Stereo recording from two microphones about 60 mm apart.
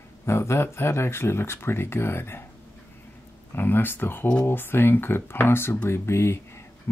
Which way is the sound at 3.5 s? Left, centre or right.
Left.